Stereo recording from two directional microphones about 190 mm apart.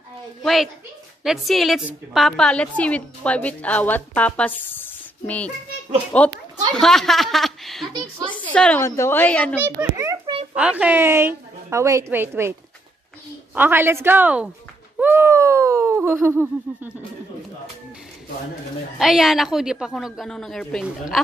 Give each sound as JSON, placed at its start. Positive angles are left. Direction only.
{"t": 0.4, "sound": "a woman's voice", "side_deg": 0}
{"t": 9.6, "sound": "a woman's voice", "side_deg": -15}
{"t": 13.6, "sound": "a woman's voice", "side_deg": -10}
{"t": 15.0, "sound": "a sound", "side_deg": -10}
{"t": 18.9, "sound": "a woman's voice", "side_deg": 0}